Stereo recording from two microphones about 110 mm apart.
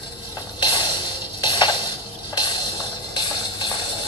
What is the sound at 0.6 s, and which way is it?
Music, 45° left (ahead or behind).